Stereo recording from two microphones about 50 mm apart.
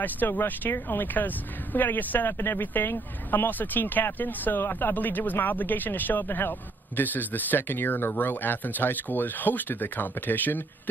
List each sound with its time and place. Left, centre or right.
0.0 s speech: left